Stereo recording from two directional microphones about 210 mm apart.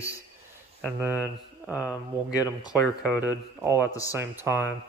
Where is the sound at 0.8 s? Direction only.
10° right (ahead or behind).